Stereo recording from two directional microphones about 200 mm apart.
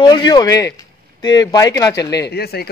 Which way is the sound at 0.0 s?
20° left (ahead or behind).